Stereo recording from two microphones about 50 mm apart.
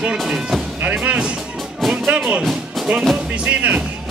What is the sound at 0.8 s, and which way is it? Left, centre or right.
Music, right.